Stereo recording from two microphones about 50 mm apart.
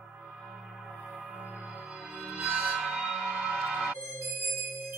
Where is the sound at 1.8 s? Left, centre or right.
Centre.